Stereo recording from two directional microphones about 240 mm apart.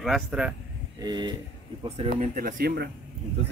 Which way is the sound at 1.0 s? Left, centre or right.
Centre.